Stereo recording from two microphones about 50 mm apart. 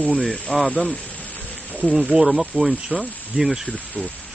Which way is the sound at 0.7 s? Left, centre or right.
Left.